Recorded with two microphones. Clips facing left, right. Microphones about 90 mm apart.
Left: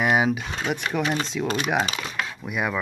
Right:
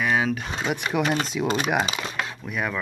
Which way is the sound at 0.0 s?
15° left (ahead or behind).